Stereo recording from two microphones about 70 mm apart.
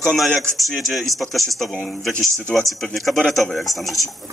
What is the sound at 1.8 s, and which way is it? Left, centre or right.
Speech, centre.